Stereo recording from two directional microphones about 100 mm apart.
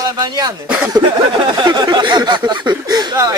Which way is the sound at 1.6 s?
45° right (ahead or behind).